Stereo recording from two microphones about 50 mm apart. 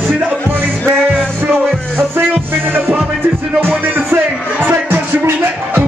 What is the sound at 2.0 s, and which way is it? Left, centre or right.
Music, right.